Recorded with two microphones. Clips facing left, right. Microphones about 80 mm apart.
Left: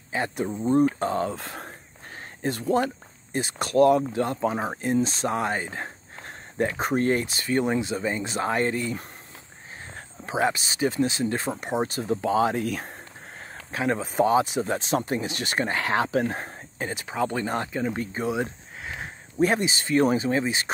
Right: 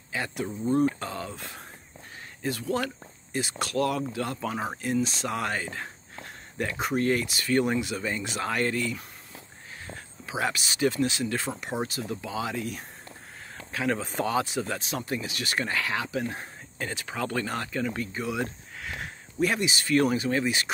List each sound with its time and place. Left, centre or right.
0.1 s speech: left
2.4 s speech: left
10.2 s speech: left
12.6 s speech: left
13.7 s speech: left
16.7 s speech: left